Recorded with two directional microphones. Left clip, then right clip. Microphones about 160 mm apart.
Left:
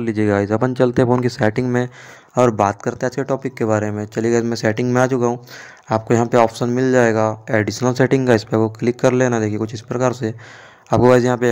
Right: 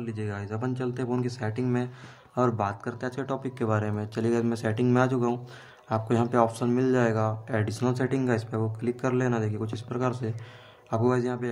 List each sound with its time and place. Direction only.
0.0 s speech: 50° left (ahead or behind)
2.3 s speech: 35° left (ahead or behind)
10.9 s speech: 45° left (ahead or behind)